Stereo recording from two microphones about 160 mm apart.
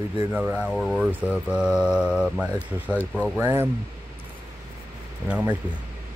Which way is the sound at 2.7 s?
15° right (ahead or behind).